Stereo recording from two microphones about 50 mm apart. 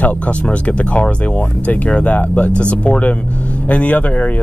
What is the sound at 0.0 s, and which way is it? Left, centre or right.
Speech, left.